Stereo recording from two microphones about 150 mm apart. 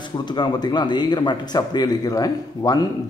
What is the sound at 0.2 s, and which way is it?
Speech, 30° left (ahead or behind).